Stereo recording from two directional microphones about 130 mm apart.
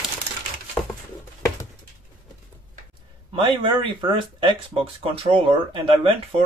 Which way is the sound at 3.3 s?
40° right (ahead or behind).